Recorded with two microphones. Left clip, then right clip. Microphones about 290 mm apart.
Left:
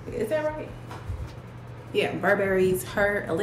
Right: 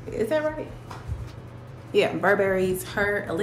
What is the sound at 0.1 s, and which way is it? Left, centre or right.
Speech, centre.